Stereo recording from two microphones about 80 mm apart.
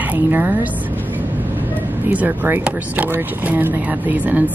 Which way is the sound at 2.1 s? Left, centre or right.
Right.